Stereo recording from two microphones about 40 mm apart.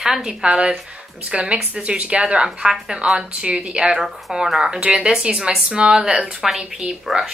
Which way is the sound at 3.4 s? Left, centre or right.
Right.